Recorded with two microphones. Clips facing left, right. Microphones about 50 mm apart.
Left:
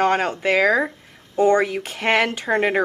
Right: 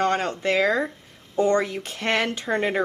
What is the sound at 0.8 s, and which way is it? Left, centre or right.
Speech, left.